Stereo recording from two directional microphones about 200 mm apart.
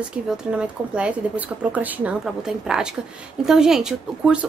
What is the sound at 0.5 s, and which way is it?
A woman's voice, 5° right (ahead or behind).